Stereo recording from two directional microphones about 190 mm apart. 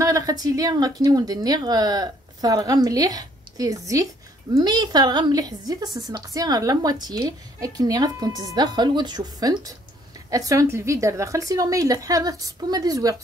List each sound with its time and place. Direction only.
0.0 s a woman's voice: 20° right (ahead or behind)